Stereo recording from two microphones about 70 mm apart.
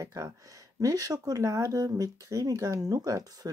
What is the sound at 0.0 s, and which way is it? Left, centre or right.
Speech, right.